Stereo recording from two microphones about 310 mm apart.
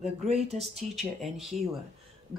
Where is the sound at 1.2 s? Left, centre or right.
Centre.